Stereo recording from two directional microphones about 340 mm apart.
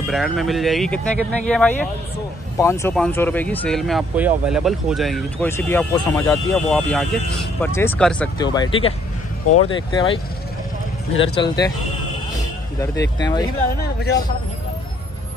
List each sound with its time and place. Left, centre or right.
0.1 s speech: centre
11.3 s speech: centre
13.2 s speech: centre
13.7 s speech: left